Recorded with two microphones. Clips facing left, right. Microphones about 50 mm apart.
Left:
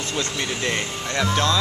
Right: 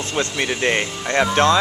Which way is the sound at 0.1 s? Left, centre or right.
Right.